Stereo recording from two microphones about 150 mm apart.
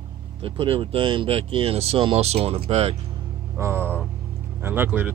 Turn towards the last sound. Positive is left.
turn(degrees=-15)  # may be behind; listen again after turning